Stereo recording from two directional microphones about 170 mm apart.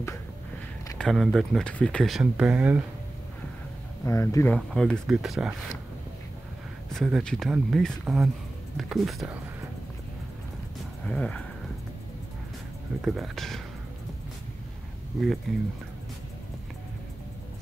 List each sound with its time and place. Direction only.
0.9 s speech: centre (ahead or behind)
4.0 s speech: 20° left (ahead or behind)
4.6 s speech: 5° left (ahead or behind)
6.9 s speech: centre (ahead or behind)
11.1 s speech: 5° left (ahead or behind)
13.0 s speech: centre (ahead or behind)
15.5 s speech: centre (ahead or behind)